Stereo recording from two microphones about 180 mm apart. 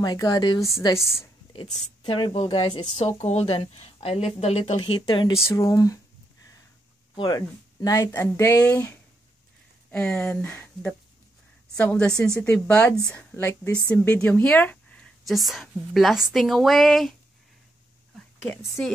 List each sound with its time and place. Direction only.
0.0 s a woman's voice: 20° left (ahead or behind)
0.9 s speech: centre (ahead or behind)
1.5 s a woman's voice: 30° left (ahead or behind)
3.2 s speech: 35° left (ahead or behind); by 5.9 s 15° left (ahead or behind)
7.2 s a woman's voice: 25° left (ahead or behind); by 17.1 s centre (ahead or behind)
18.4 s a woman's voice: 15° left (ahead or behind)